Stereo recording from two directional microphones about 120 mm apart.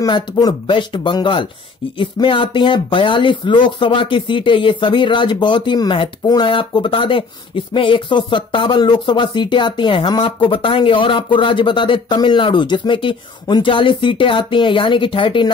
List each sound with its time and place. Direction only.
0.0 s speech: 35° left (ahead or behind)